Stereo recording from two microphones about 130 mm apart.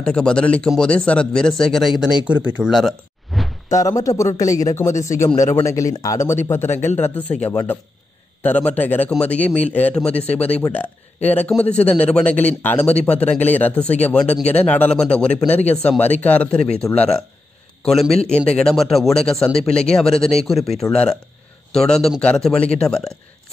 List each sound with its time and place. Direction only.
0.0 s speech: 5° left (ahead or behind)
3.3 s a sound: centre (ahead or behind)
3.7 s speech: 25° left (ahead or behind)
8.4 s speech: 10° left (ahead or behind)